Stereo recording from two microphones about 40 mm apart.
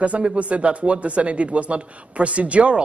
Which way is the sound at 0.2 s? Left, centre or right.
Right.